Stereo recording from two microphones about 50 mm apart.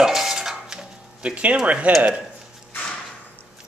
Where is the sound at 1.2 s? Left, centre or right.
Right.